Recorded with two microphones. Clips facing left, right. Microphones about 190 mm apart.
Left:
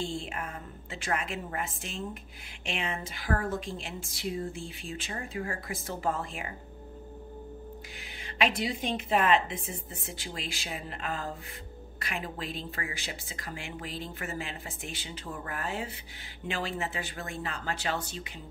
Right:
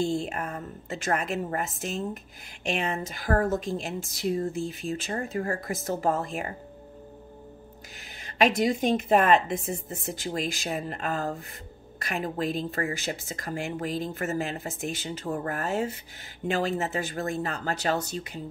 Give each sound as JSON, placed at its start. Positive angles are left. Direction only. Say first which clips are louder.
{"t": 0.0, "sound": "speech", "louder": "right 7 dB", "side_deg": -45}
{"t": 8.0, "sound": "speech", "louder": "right 6 dB", "side_deg": -40}